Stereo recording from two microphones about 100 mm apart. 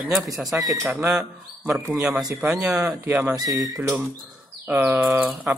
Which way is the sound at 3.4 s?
35° right (ahead or behind).